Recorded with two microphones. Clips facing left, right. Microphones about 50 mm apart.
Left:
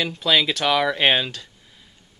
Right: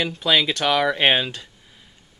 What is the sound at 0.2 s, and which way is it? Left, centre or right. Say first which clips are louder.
Speech: even; centre.